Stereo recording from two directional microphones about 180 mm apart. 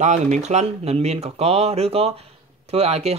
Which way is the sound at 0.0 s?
40° right (ahead or behind).